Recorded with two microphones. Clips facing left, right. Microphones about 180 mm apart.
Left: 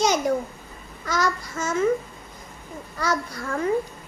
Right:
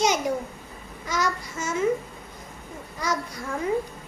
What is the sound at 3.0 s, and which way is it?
Babbling, 15° right (ahead or behind).